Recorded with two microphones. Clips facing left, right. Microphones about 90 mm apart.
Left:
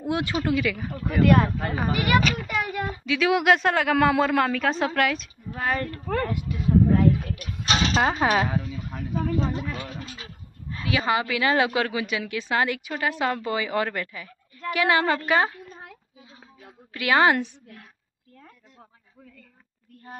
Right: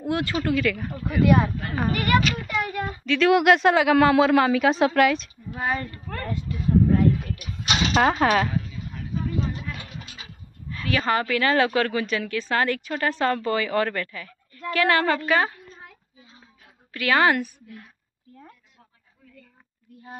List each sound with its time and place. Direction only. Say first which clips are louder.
0.1 s a woman's voice: right 1 dB; 20° left (ahead or behind)
0.9 s speech: left 1 dB; centre (ahead or behind)
6.3 s a woman's voice: even; 15° left (ahead or behind)
6.9 s speech: even; centre (ahead or behind)
8.9 s a sound: left 2 dB; 90° left
10.7 s a woman's voice: right 1 dB; 20° left (ahead or behind)
16.9 s a woman's voice: even; 20° left (ahead or behind)